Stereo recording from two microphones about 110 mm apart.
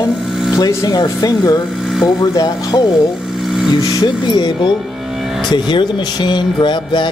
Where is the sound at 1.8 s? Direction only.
5° right (ahead or behind).